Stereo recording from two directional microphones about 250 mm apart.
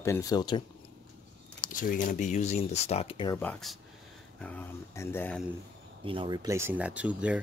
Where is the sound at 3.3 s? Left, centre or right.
Centre.